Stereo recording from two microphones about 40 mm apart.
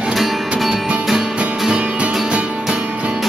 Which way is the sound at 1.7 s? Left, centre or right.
Right.